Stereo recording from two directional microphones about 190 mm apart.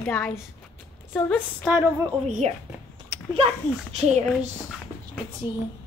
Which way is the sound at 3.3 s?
30° right (ahead or behind).